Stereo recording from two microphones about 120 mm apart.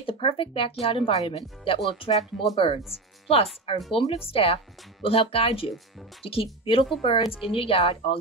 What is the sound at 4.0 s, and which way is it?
Speech, 50° left (ahead or behind).